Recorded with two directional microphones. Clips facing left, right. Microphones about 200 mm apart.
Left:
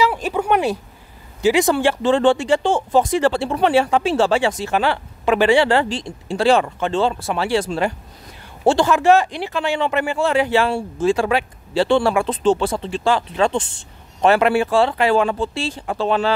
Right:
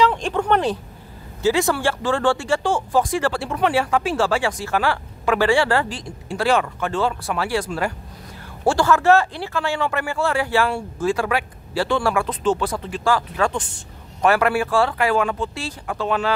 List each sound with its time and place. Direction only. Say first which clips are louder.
0.0 s speech: even; 10° left (ahead or behind); by 16.3 s 30° left (ahead or behind)